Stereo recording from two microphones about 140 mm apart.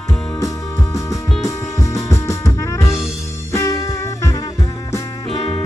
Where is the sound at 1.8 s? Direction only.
20° left (ahead or behind).